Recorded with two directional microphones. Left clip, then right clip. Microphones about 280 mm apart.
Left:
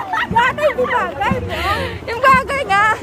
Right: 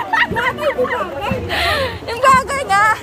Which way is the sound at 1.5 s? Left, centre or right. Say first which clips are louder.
Right 3 dB; centre.